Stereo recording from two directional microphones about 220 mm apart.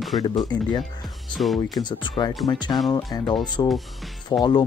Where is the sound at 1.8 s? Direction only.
20° left (ahead or behind).